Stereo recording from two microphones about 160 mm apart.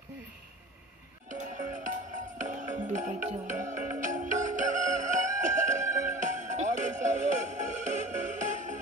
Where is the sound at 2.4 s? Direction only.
50° right (ahead or behind).